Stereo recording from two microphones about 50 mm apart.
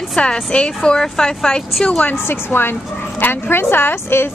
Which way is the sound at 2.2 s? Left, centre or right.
Left.